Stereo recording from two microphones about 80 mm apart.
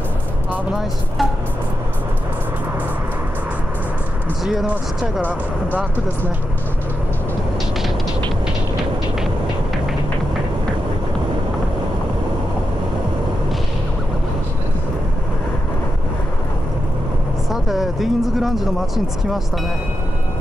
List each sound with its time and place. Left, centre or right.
5.2 s speech: right
17.5 s speech: centre